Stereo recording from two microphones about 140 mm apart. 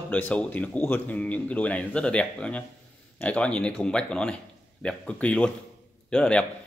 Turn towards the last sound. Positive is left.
turn(degrees=5)  # may be behind; listen again after turning